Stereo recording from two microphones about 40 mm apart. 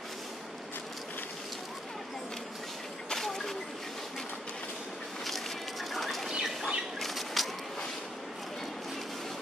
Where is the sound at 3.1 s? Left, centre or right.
Centre.